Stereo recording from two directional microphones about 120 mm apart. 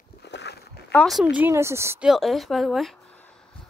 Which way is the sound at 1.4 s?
20° right (ahead or behind).